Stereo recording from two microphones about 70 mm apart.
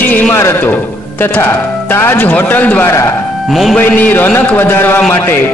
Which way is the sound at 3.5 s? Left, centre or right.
Centre.